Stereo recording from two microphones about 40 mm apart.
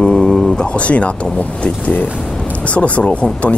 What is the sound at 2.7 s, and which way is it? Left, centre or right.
Speech, left.